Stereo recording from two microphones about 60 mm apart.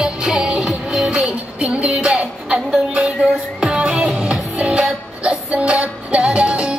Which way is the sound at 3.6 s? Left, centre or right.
Centre.